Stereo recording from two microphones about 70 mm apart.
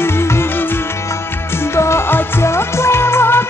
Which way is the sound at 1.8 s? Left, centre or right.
Left.